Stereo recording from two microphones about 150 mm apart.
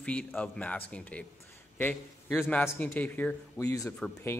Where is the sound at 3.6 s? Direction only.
20° left (ahead or behind).